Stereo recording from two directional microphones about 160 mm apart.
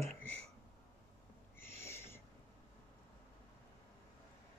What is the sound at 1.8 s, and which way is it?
Owl, 15° left (ahead or behind).